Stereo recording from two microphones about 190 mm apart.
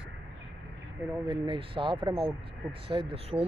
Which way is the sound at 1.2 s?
25° right (ahead or behind).